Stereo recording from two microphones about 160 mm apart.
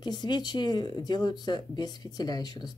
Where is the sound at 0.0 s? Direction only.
25° left (ahead or behind).